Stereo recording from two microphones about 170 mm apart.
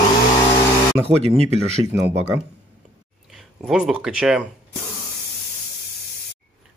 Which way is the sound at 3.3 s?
5° right (ahead or behind).